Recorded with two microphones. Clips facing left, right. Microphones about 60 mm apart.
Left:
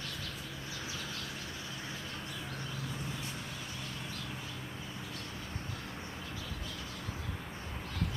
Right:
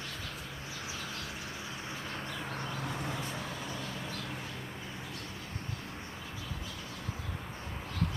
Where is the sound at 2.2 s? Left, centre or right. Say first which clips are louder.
Right 3 dB; right.